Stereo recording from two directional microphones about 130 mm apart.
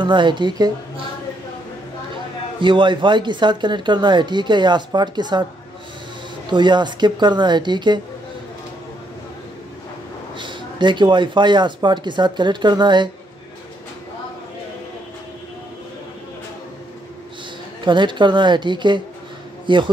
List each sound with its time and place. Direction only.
0.0 s speech: 40° right (ahead or behind)
2.6 s speech: 40° right (ahead or behind)
6.5 s speech: 35° right (ahead or behind)
10.3 s speech: 35° right (ahead or behind)
17.8 s speech: 35° right (ahead or behind)